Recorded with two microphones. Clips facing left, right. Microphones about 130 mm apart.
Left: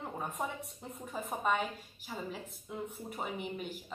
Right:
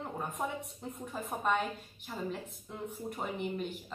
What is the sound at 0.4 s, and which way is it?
A woman's voice, centre (ahead or behind).